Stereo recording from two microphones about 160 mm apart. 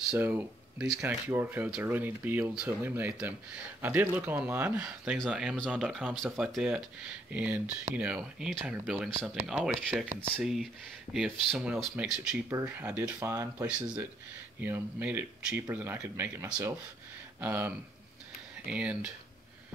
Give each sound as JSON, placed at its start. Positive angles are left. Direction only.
{"t": 0.1, "sound": "speech", "side_deg": -10}
{"t": 10.3, "sound": "speech", "side_deg": 0}
{"t": 13.7, "sound": "speech", "side_deg": -5}